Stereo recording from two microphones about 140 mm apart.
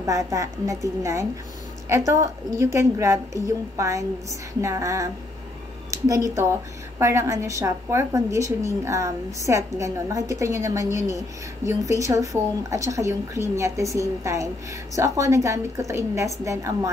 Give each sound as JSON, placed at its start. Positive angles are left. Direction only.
{"t": 0.0, "sound": "a woman's voice", "side_deg": -25}